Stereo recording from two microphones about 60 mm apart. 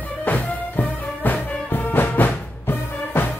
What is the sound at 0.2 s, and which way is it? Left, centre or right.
Music, left.